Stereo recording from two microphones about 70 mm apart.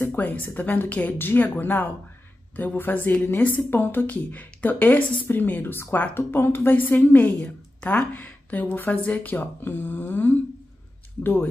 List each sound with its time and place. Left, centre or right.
0.0 s a woman's voice: left